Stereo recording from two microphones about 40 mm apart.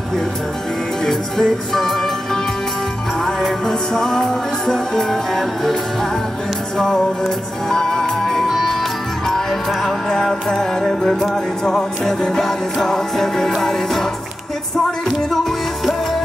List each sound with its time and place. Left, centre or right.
1.0 s music: centre
6.8 s music: centre
8.5 s music: centre
9.8 s music: centre
15.8 s music: centre